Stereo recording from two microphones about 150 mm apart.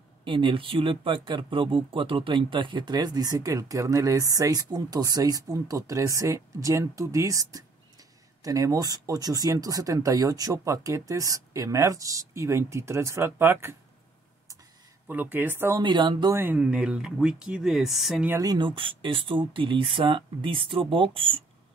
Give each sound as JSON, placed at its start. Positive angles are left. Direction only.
{"t": 0.2, "sound": "speech", "side_deg": -35}
{"t": 15.0, "sound": "speech", "side_deg": -10}
{"t": 15.8, "sound": "speech", "side_deg": -30}
{"t": 16.3, "sound": "speech", "side_deg": -10}
{"t": 18.4, "sound": "speech", "side_deg": -30}